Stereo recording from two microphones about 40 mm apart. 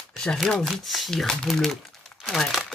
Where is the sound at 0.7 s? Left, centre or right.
Centre.